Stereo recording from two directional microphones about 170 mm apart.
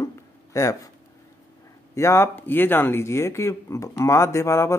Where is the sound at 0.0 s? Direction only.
15° left (ahead or behind).